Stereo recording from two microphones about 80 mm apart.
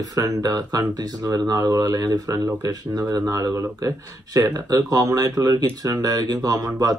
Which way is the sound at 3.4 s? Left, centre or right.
Right.